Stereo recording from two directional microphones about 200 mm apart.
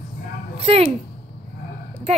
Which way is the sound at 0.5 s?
30° right (ahead or behind).